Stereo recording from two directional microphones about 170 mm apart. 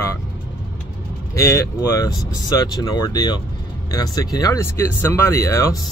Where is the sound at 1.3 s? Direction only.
15° left (ahead or behind).